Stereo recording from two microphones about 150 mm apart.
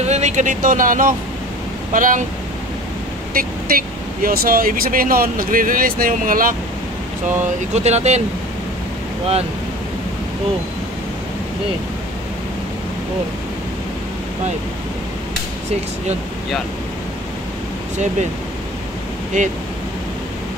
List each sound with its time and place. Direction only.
0.0 s speech: 50° right (ahead or behind)
3.3 s speech: 70° right (ahead or behind)
7.7 s speech: 50° right (ahead or behind)
19.3 s speech: 55° right (ahead or behind)